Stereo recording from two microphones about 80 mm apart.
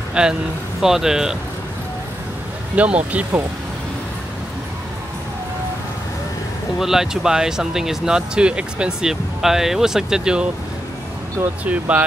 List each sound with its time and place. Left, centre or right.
0.1 s speech: centre
2.7 s speech: centre
6.8 s speech: centre
11.6 s speech: centre